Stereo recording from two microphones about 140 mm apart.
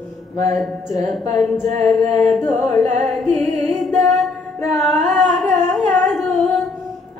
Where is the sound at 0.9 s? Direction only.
55° right (ahead or behind).